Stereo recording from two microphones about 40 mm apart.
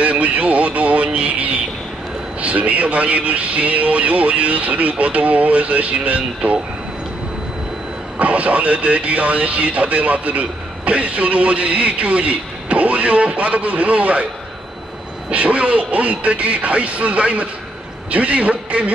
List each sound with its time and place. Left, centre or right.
0.0 s a sound: right
2.4 s speech: right
8.2 s speech: right
15.3 s a man's voice: right